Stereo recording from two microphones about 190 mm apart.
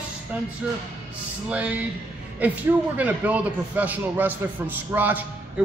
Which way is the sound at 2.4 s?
10° right (ahead or behind).